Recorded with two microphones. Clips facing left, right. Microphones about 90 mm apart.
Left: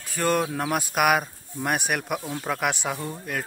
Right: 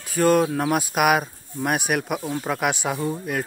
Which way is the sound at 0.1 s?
5° right (ahead or behind).